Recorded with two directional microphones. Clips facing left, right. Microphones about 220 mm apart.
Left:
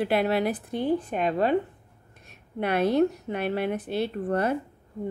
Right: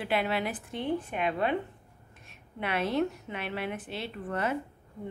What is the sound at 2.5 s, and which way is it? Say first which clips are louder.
A woman's voice: left 7 dB; 40° left (ahead or behind).